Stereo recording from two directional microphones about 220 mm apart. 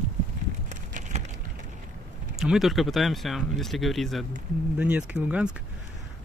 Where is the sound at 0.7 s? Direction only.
35° right (ahead or behind).